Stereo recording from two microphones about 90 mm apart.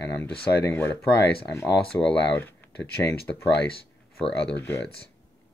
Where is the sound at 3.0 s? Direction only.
25° left (ahead or behind).